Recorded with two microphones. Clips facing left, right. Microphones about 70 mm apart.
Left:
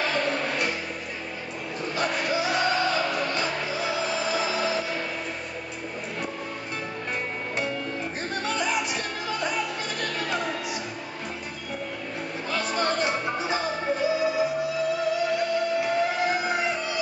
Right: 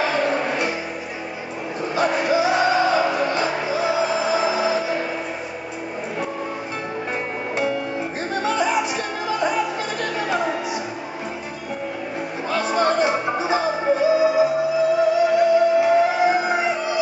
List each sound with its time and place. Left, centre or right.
0.0 s music: centre
2.0 s music: centre
7.5 s music: centre
12.4 s music: centre